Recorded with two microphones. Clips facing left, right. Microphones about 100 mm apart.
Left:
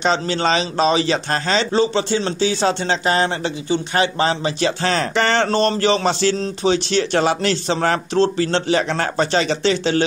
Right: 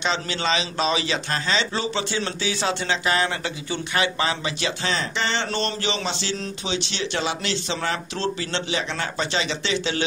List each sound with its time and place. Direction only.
0.0 s a man's voice: 40° left (ahead or behind)
5.5 s speech: 40° left (ahead or behind)